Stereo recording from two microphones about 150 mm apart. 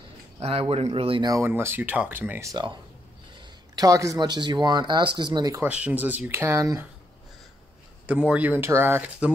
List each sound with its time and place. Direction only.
0.4 s speech: 40° right (ahead or behind)
1.3 s speech: 15° right (ahead or behind)
3.7 s speech: 25° right (ahead or behind)
5.7 s speech: 10° right (ahead or behind)
8.1 s speech: 10° right (ahead or behind)